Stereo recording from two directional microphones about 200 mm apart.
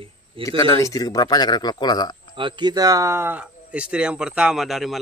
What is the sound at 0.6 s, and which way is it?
A man's voice, 15° left (ahead or behind).